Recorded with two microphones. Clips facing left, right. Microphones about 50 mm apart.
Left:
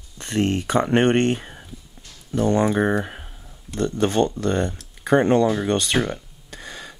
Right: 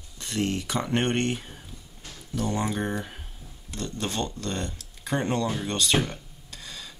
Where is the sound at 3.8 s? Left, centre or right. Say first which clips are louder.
Left 11 dB; left.